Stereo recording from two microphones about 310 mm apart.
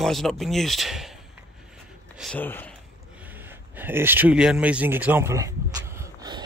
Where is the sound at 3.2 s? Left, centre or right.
Centre.